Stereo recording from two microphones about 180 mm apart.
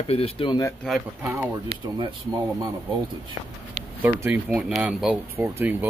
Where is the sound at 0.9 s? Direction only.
5° left (ahead or behind).